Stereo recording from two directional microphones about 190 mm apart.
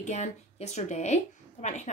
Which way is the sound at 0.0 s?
35° left (ahead or behind).